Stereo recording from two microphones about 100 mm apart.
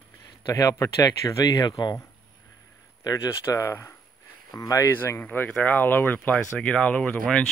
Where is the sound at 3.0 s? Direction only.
35° left (ahead or behind).